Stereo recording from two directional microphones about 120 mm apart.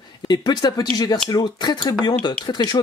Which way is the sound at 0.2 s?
35° left (ahead or behind).